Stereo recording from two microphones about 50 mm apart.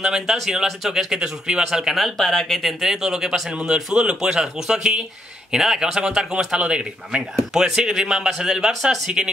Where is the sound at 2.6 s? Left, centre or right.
Centre.